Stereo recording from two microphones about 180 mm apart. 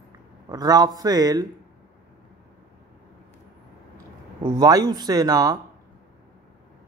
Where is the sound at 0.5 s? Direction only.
20° right (ahead or behind).